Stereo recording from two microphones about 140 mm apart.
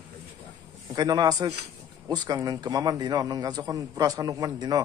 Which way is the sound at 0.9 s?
30° right (ahead or behind).